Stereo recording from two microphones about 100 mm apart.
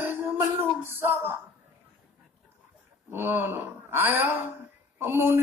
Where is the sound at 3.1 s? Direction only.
20° right (ahead or behind).